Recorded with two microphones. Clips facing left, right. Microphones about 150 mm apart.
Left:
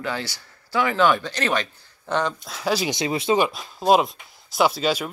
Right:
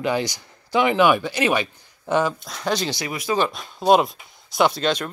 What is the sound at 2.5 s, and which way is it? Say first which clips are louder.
Speech: left 2 dB; 5° left (ahead or behind).